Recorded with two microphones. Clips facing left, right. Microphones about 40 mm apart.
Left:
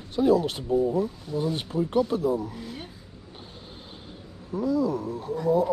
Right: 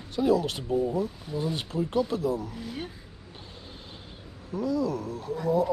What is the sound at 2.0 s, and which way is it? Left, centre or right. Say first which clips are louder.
Speech: left 3 dB; centre.